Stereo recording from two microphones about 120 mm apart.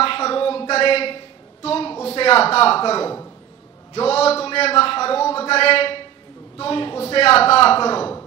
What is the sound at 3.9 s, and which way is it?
A man's voice, 55° left (ahead or behind).